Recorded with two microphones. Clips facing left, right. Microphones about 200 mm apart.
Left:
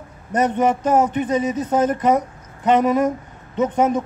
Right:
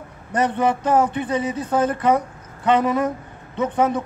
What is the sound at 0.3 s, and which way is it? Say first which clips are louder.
Speech: left 2 dB; 20° left (ahead or behind).